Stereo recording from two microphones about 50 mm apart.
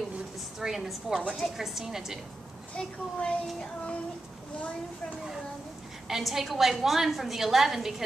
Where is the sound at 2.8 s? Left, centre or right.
Centre.